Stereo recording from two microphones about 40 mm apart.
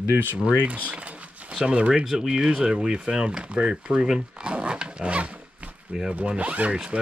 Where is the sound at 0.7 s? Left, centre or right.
Right.